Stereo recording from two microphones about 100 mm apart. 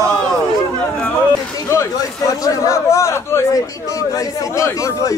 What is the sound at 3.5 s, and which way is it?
Speech, 35° left (ahead or behind).